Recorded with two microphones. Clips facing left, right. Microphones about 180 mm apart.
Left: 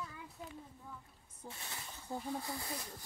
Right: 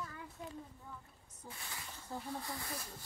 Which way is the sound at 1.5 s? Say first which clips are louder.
Right 2 dB; 25° left (ahead or behind).